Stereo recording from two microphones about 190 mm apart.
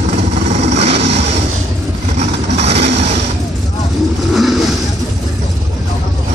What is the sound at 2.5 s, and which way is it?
Vehicle, 35° right (ahead or behind).